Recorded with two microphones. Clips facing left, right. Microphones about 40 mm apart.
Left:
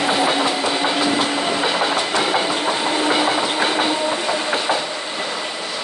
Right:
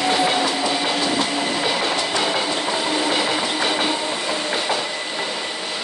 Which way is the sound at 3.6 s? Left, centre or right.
Centre.